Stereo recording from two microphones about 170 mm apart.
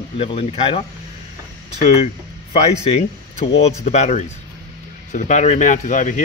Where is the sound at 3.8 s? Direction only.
40° left (ahead or behind).